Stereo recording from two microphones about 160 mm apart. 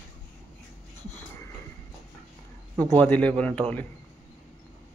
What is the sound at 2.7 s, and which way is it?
Speech, 25° right (ahead or behind).